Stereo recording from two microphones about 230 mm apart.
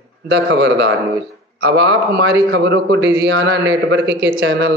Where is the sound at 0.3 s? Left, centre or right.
Right.